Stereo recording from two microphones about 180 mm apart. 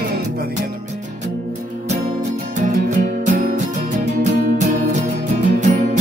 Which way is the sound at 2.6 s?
45° right (ahead or behind).